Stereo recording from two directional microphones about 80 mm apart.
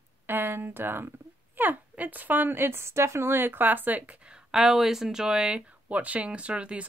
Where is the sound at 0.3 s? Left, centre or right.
Right.